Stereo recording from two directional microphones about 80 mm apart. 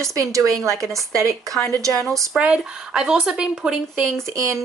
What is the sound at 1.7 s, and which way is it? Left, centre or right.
Speech, right.